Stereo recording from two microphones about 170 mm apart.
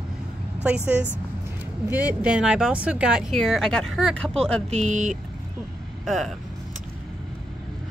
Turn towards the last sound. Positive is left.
turn(degrees=0)  # may be behind; listen again after turning